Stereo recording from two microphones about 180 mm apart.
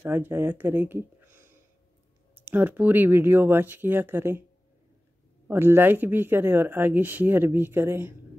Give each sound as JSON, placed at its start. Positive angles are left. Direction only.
{"t": 0.0, "sound": "speech", "side_deg": -10}
{"t": 5.5, "sound": "speech", "side_deg": -15}